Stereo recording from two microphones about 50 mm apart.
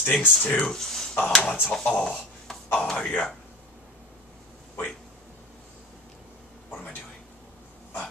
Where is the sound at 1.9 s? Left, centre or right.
Left.